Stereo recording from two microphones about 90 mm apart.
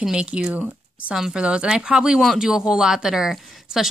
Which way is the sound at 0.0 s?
10° right (ahead or behind).